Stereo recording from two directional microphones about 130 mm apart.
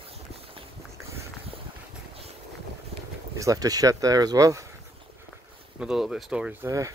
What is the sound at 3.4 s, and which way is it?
Speech, 25° right (ahead or behind).